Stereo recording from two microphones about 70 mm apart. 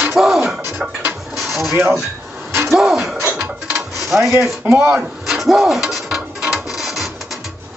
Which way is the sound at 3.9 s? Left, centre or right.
Centre.